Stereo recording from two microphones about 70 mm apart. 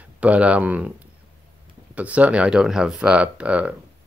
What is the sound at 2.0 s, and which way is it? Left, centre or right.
Speech, right.